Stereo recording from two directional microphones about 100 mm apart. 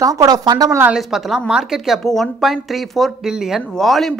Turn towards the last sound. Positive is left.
turn(degrees=0)  # may be behind; listen again after turning